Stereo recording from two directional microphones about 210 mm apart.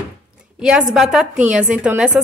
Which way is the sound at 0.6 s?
5° right (ahead or behind).